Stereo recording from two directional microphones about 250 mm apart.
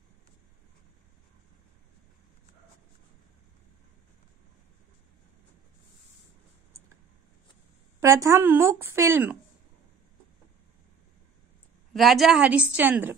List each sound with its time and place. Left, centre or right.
8.0 s speech: centre
11.9 s a woman's voice: centre